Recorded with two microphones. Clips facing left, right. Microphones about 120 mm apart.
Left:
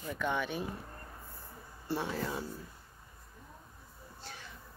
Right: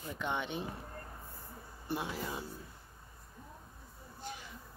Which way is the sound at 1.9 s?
10° right (ahead or behind).